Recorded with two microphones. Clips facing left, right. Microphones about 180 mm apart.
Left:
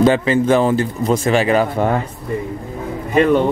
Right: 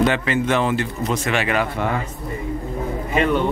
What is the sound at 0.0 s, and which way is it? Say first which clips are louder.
Speech: left 6 dB; 35° left (ahead or behind).